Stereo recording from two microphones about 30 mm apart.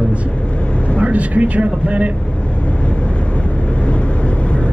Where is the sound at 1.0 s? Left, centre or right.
Right.